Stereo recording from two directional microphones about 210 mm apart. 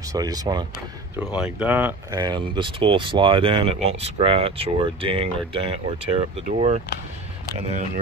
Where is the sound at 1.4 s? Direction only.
5° right (ahead or behind).